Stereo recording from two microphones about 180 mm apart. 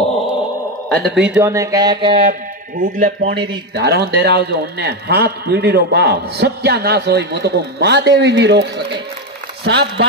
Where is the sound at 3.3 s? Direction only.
30° right (ahead or behind).